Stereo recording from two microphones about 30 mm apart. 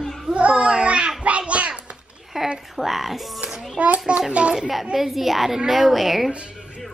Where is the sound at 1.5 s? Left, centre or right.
Right.